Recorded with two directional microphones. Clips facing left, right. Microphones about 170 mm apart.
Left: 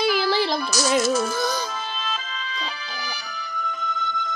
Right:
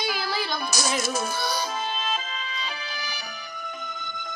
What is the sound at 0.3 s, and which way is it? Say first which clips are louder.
Music: left 7 dB; 30° left (ahead or behind).